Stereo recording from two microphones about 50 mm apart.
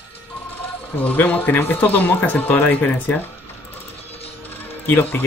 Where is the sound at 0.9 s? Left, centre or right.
Left.